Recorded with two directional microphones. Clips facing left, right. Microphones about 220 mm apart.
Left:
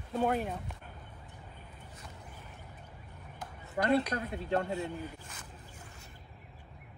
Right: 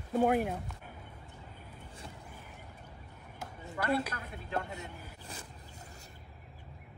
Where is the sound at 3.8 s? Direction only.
30° left (ahead or behind).